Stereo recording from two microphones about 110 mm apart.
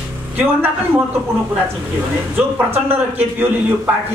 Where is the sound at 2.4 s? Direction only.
20° right (ahead or behind).